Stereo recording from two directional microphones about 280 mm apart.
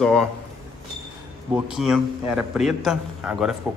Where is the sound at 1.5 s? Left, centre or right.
Centre.